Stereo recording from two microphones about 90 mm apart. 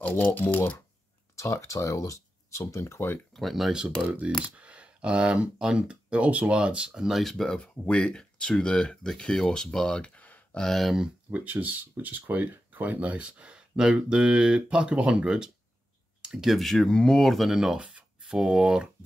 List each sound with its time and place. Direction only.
0.1 s speech: 20° left (ahead or behind)
1.3 s speech: 30° left (ahead or behind)
3.3 s speech: centre (ahead or behind)
11.2 s speech: 15° right (ahead or behind)